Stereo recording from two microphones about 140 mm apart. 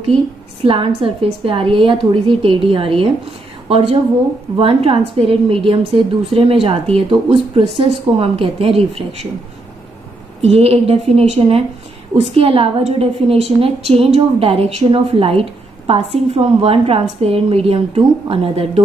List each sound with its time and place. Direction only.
0.7 s a woman's voice: 40° right (ahead or behind)
10.4 s a woman's voice: 45° right (ahead or behind)